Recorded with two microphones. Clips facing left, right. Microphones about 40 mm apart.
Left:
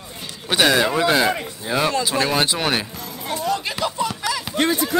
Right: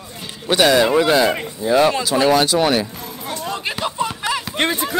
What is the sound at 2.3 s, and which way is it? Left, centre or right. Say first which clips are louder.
Speech: right 5 dB; left.